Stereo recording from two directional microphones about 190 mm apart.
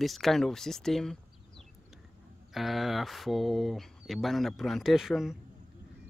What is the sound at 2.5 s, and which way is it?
Speech, centre (ahead or behind).